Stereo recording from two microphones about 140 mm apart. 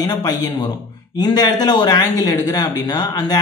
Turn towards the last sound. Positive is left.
turn(degrees=30)  # may be behind; listen again after turning